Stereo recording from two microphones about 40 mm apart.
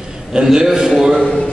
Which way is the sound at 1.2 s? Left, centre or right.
Centre.